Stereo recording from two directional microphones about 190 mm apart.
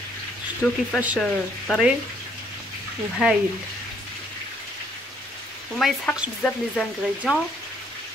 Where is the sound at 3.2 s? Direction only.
5° right (ahead or behind).